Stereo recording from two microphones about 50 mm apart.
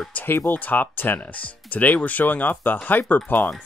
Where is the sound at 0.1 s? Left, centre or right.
Left.